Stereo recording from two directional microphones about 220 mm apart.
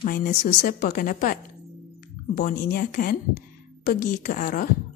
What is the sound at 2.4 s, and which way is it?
Speech, 40° left (ahead or behind).